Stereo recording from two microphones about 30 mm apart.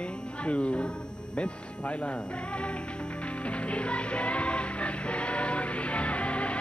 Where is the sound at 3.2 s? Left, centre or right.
Left.